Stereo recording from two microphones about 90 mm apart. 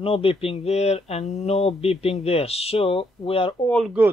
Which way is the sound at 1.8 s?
90° left.